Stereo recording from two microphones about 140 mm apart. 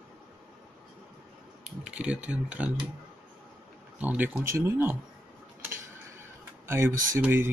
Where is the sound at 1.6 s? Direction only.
10° right (ahead or behind).